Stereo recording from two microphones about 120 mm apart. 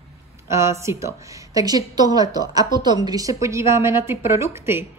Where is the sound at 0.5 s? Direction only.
25° right (ahead or behind).